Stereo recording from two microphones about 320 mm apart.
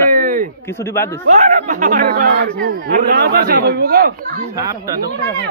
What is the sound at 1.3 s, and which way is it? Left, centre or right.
Speech, right.